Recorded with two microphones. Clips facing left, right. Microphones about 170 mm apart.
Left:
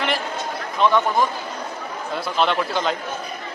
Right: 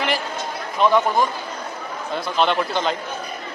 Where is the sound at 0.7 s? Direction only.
5° right (ahead or behind).